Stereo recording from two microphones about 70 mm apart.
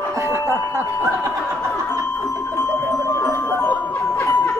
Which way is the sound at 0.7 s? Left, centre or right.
Right.